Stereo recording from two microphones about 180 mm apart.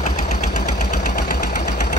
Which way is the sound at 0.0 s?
40° left (ahead or behind).